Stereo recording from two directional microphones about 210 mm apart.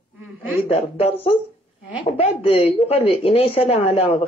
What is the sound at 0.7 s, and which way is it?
A woman's voice, 25° left (ahead or behind).